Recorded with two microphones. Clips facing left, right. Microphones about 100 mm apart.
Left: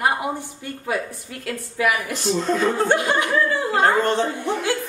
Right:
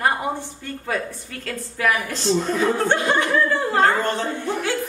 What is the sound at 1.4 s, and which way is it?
A woman's voice, 10° left (ahead or behind).